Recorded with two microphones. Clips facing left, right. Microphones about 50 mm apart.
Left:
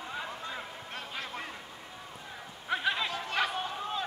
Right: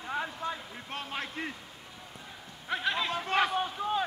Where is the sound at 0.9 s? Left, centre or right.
Right.